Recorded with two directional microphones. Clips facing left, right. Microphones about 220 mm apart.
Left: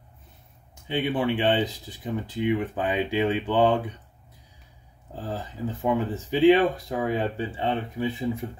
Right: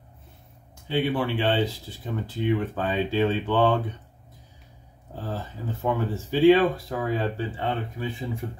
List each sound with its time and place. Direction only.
0.8 s speech: 20° left (ahead or behind)
5.1 s speech: 15° left (ahead or behind)